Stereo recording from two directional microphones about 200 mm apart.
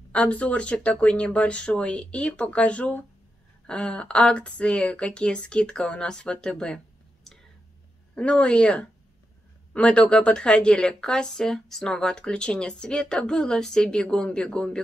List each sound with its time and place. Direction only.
0.1 s speech: 5° left (ahead or behind)
7.3 s whispering: centre (ahead or behind)
8.1 s speech: 5° left (ahead or behind)